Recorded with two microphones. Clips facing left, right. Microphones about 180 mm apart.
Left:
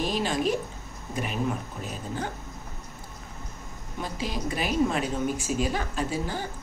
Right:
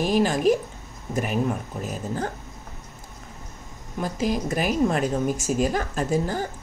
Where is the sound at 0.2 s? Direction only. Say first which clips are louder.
Right 5 dB; 50° right (ahead or behind).